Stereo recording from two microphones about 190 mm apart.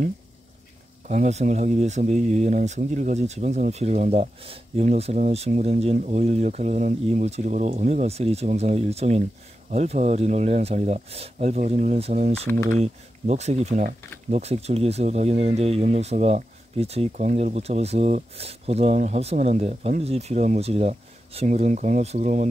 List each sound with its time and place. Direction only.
1.0 s speech: 35° right (ahead or behind)